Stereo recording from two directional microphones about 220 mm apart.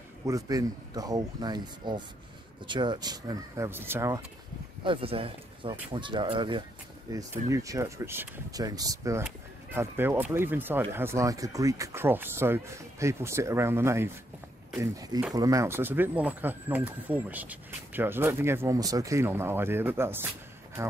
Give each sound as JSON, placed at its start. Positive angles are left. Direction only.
{"t": 0.3, "sound": "speech", "side_deg": -15}
{"t": 4.8, "sound": "speech", "side_deg": -25}